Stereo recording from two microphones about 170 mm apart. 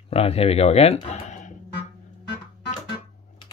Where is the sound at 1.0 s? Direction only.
40° left (ahead or behind).